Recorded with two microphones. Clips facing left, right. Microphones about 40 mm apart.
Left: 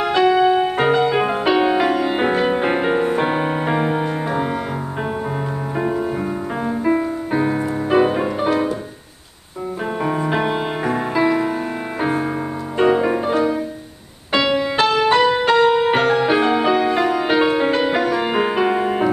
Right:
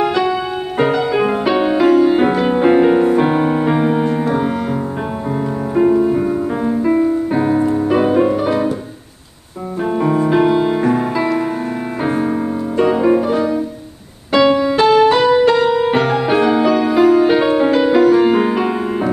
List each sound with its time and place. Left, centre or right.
0.4 s music: centre
5.8 s music: centre
9.9 s music: centre
14.5 s music: left
14.8 s music: centre
16.0 s music: centre